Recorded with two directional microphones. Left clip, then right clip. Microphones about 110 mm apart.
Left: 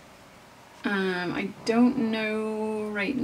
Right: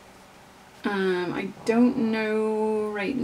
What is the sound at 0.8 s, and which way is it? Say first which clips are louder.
A woman's voice: right 2 dB; 20° right (ahead or behind).